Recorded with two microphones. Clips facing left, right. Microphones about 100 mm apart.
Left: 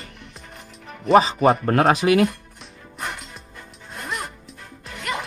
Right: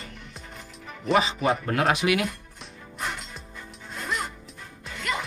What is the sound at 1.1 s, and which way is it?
Speech, 35° left (ahead or behind).